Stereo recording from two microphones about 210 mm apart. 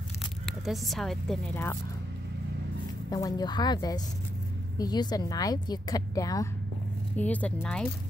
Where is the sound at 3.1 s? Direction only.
20° left (ahead or behind).